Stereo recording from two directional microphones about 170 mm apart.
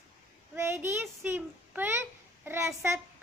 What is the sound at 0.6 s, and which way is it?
A child's voice, 15° right (ahead or behind).